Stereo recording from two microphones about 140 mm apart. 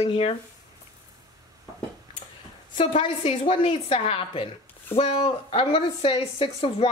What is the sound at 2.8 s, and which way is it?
A woman's voice, 40° left (ahead or behind).